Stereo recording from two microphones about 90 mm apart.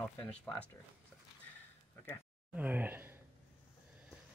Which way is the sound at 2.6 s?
20° right (ahead or behind).